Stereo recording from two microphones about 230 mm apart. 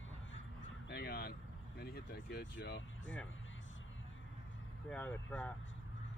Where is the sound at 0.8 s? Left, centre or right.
Left.